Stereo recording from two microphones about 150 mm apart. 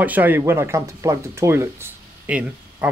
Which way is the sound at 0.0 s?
10° right (ahead or behind).